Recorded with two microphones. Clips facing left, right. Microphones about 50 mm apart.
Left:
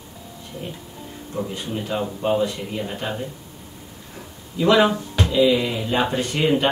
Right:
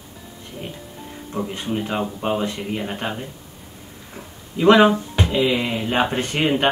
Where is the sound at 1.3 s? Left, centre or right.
Right.